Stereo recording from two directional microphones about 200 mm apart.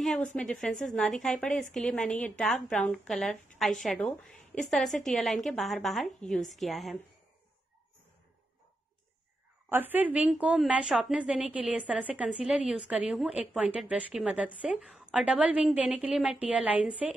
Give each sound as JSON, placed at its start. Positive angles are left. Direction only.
{"t": 0.4, "sound": "a woman's voice", "side_deg": 5}
{"t": 9.7, "sound": "a woman's voice", "side_deg": -10}